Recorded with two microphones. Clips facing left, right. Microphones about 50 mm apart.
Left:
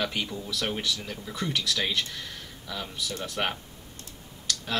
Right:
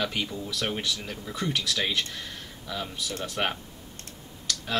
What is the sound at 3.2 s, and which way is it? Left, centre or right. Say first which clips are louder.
Speech: right 1 dB; centre.